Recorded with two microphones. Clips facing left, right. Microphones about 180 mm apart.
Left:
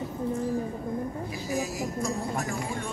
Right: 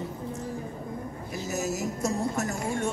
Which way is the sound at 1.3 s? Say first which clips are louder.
Right 4 dB; 45° right (ahead or behind).